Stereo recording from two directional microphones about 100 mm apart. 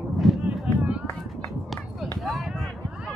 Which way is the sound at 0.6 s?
10° right (ahead or behind).